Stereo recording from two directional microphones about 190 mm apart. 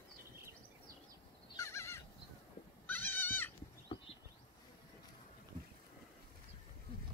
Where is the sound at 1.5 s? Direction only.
15° left (ahead or behind).